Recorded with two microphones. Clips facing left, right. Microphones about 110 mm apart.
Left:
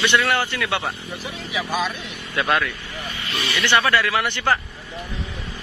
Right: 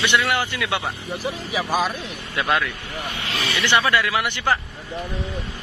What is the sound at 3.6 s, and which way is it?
Speech, 15° right (ahead or behind).